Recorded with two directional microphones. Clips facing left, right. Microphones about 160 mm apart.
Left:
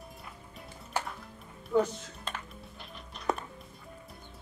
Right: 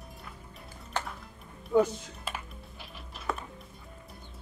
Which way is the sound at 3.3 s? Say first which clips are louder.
Left 3 dB; 20° left (ahead or behind).